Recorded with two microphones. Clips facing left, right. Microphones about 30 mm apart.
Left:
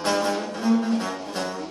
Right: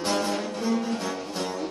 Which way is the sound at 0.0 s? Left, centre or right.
Left.